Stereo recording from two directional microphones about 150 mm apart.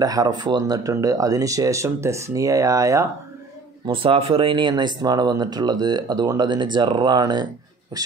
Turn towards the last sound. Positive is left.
turn(degrees=-30)  # may be behind; listen again after turning